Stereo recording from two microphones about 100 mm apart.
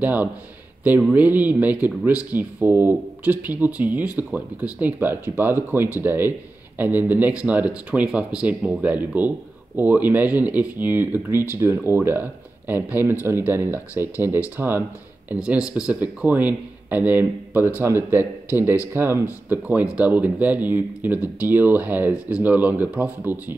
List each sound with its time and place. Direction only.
0.0 s speech: 15° right (ahead or behind)
15.9 s speech: 15° right (ahead or behind)
19.5 s speech: 15° right (ahead or behind)